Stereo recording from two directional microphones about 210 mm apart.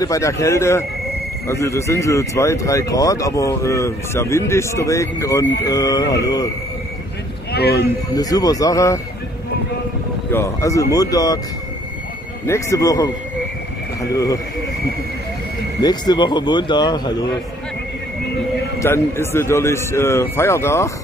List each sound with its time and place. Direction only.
0.0 s speech: 15° left (ahead or behind)
7.5 s speech: 50° left (ahead or behind)
8.1 s speech: 15° left (ahead or behind)
10.3 s speech: 15° left (ahead or behind)
12.4 s speech: 15° left (ahead or behind)
14.1 s speech: 15° left (ahead or behind)
15.8 s speech: 20° left (ahead or behind)
18.8 s speech: 10° left (ahead or behind)